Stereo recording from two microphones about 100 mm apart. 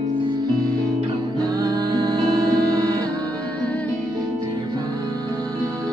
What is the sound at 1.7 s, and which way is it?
Music, 40° right (ahead or behind).